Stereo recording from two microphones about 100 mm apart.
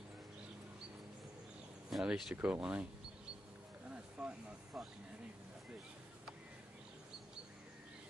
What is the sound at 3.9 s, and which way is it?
Vehicle, 10° right (ahead or behind).